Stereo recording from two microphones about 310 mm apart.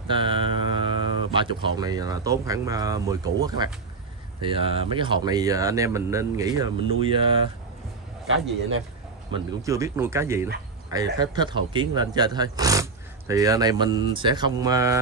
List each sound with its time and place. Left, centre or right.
0.1 s speech: centre
9.3 s speech: centre